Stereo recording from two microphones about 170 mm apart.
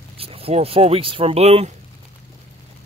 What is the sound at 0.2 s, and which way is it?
Speech, 35° right (ahead or behind).